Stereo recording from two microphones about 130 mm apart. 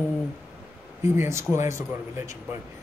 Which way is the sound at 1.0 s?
20° right (ahead or behind).